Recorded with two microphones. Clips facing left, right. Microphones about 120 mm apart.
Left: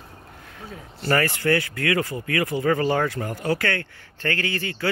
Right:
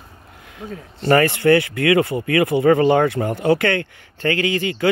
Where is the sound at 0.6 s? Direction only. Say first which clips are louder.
Right 7 dB; 5° left (ahead or behind).